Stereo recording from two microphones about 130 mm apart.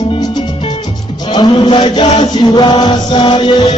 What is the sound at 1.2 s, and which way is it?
Chant, 40° left (ahead or behind).